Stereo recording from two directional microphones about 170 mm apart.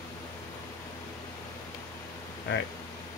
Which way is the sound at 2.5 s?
90° left.